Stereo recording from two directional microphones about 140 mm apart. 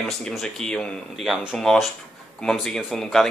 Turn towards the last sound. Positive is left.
turn(degrees=0)  # may be behind; listen again after turning